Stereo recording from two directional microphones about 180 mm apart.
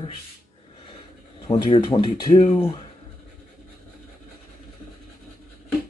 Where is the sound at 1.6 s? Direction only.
25° left (ahead or behind).